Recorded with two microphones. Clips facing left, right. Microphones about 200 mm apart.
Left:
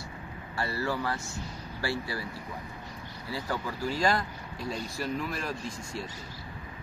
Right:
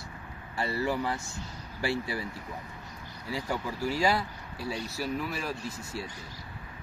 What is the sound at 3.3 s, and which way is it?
Speech, 15° right (ahead or behind).